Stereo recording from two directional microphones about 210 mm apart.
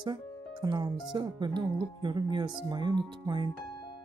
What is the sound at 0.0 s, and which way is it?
Music, 20° right (ahead or behind).